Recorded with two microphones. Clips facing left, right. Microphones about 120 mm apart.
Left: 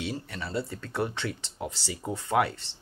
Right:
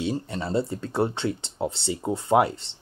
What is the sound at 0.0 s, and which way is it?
Speech, 30° right (ahead or behind).